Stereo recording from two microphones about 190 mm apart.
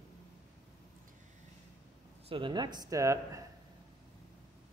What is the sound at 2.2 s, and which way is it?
Speech, 25° right (ahead or behind).